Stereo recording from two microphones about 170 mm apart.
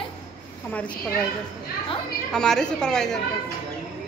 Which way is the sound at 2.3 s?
5° left (ahead or behind).